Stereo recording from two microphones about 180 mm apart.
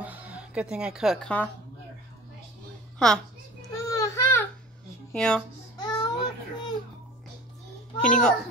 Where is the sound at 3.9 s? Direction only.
15° left (ahead or behind).